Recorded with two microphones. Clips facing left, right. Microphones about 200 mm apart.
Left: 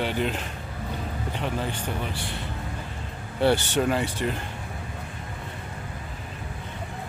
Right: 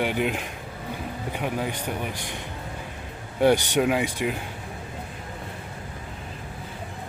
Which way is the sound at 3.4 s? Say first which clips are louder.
Right 2 dB; 15° right (ahead or behind).